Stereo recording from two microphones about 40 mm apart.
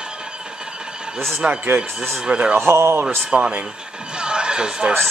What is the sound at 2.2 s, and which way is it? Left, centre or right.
Speech, right.